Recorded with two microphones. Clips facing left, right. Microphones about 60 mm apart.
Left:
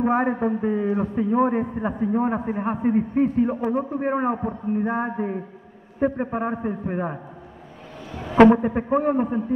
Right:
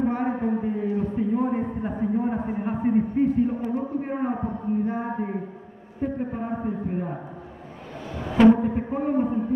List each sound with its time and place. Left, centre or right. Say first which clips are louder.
0.0 s a man's voice: left 4 dB; left
8.5 s a man's voice: even; left